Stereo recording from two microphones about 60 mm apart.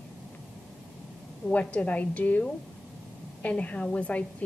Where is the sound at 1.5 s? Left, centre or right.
Left.